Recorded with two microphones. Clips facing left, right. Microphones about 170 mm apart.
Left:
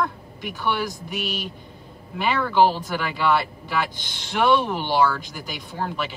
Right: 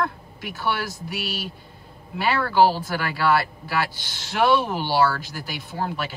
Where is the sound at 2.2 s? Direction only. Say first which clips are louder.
Even; 5° right (ahead or behind).